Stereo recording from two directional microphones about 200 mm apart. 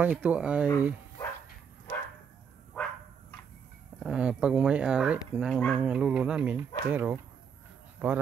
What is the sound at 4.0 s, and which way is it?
Speech, 5° right (ahead or behind).